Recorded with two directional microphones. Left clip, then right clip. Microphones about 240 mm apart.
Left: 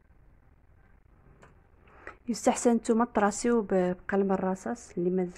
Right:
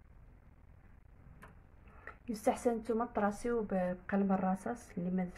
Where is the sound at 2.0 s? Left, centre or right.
Left.